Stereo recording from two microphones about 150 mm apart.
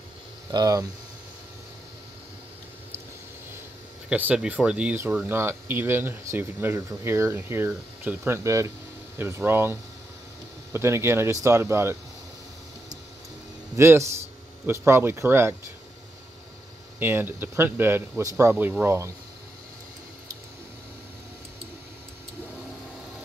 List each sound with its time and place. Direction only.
0.5 s speech: 25° right (ahead or behind)
4.1 s speech: 10° right (ahead or behind)
13.7 s speech: 20° right (ahead or behind)
17.0 s speech: 15° right (ahead or behind)